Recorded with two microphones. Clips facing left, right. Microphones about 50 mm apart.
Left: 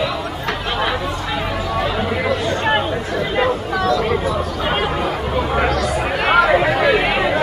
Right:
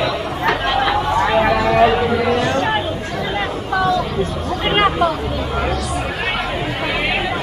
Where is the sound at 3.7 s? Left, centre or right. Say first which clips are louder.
Right 6 dB; centre.